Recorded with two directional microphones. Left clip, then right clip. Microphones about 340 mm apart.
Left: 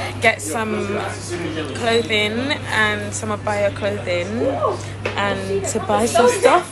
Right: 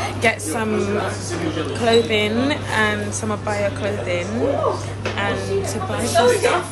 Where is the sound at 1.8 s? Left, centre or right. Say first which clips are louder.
Right 1 dB; centre.